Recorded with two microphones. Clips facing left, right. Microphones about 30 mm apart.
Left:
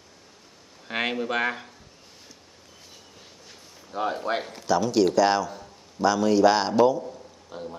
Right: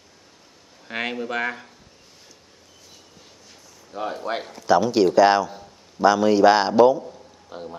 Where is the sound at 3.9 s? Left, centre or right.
Centre.